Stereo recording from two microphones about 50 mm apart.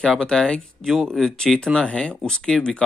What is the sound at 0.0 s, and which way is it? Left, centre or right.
Speech, centre.